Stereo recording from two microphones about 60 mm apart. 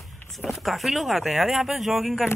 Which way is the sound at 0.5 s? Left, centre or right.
Centre.